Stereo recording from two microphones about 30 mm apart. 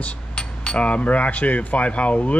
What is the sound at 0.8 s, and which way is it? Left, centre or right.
Speech, left.